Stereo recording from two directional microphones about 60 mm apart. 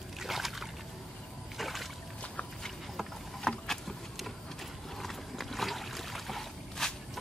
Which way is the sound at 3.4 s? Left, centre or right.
Centre.